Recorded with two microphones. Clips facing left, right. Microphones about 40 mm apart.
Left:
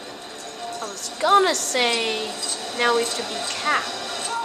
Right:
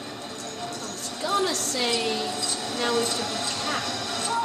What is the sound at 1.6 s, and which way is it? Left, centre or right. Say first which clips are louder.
Speech: left 4 dB; left.